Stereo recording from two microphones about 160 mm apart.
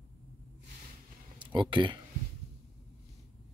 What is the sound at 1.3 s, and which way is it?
Speech, 30° right (ahead or behind).